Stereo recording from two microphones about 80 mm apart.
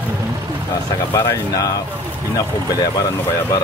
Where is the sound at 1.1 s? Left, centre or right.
Left.